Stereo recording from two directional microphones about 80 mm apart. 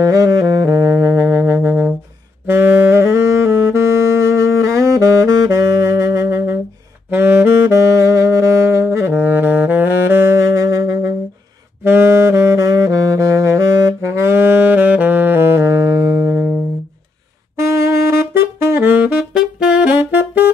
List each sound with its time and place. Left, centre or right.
0.0 s saxophone: right
0.9 s music: right
2.4 s saxophone: right
11.8 s saxophone: right
17.6 s saxophone: right